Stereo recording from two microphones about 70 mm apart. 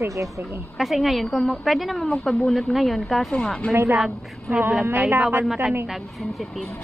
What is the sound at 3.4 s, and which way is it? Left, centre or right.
Speech, centre.